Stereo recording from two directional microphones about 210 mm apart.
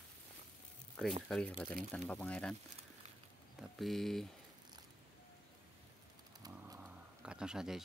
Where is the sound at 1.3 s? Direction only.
5° left (ahead or behind).